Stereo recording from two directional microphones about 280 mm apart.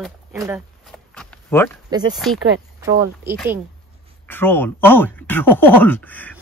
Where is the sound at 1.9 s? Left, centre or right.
Centre.